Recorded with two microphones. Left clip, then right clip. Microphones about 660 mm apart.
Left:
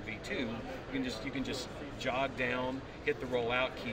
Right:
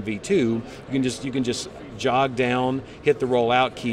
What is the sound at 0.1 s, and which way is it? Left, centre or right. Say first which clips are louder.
Speech: right 16 dB; right.